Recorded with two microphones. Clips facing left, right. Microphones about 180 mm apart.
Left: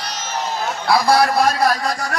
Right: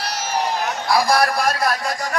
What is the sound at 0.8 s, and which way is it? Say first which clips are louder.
Speech: left 3 dB; 65° left (ahead or behind).